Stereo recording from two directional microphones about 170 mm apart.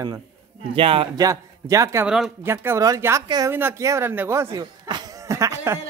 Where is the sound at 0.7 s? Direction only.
30° right (ahead or behind).